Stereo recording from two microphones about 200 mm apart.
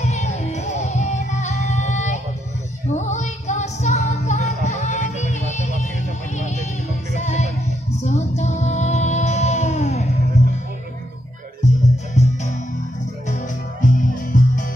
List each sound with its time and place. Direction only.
0.0 s music: 35° left (ahead or behind)
11.6 s music: 35° left (ahead or behind)